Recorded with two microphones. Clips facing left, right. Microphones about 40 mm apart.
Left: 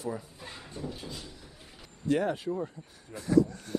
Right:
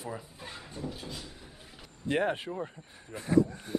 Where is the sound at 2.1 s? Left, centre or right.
Right.